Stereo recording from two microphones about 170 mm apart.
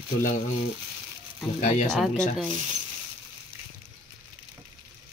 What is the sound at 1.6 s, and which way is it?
Speech, 45° left (ahead or behind).